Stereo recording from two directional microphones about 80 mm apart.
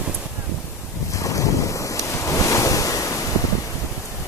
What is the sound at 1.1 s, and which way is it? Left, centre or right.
Waves, left.